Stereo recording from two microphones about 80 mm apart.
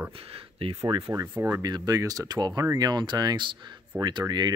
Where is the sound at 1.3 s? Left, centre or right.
Right.